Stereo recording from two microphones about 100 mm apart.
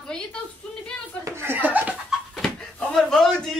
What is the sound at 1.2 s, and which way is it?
Chuckle, 25° right (ahead or behind).